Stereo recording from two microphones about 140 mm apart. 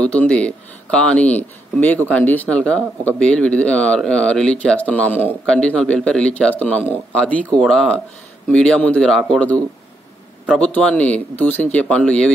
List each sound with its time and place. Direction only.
0.0 s speech: 10° left (ahead or behind)
10.6 s speech: 5° left (ahead or behind)